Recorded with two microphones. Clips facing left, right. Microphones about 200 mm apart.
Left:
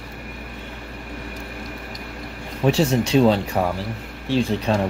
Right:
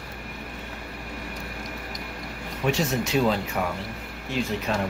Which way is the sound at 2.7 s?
30° left (ahead or behind).